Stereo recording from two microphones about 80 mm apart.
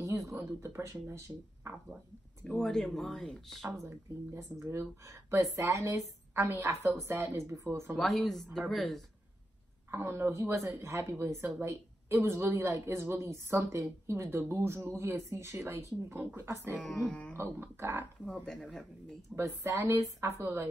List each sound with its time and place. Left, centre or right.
0.6 s a woman's voice: right
2.4 s speech: centre
3.7 s a woman's voice: right
6.3 s a woman's voice: right
7.9 s speech: centre
9.8 s a woman's voice: right
16.7 s speech: centre
17.4 s a woman's voice: right
18.2 s speech: centre
19.3 s a woman's voice: right